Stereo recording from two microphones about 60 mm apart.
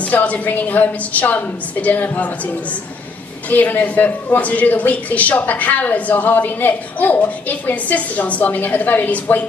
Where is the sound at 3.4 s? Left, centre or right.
Left.